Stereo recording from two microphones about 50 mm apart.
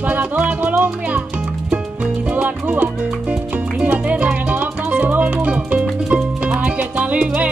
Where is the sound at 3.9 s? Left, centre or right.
Right.